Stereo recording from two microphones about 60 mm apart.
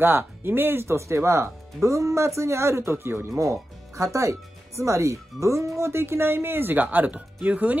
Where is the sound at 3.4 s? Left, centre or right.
Right.